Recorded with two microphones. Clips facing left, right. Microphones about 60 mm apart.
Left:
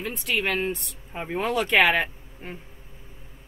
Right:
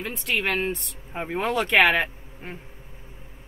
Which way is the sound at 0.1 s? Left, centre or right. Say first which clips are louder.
Right 1 dB; centre.